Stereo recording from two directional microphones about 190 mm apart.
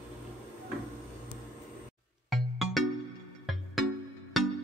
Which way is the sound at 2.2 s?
Centre (ahead or behind).